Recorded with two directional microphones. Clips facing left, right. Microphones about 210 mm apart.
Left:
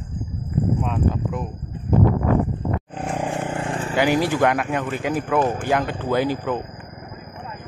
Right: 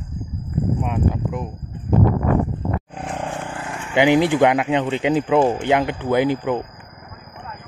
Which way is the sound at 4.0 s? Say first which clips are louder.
Right 4 dB; 20° right (ahead or behind).